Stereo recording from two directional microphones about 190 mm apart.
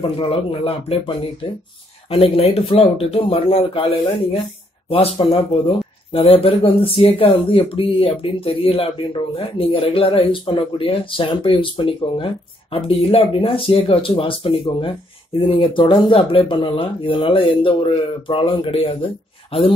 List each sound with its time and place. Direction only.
0.0 s speech: 30° left (ahead or behind)
4.8 s speech: 30° left (ahead or behind)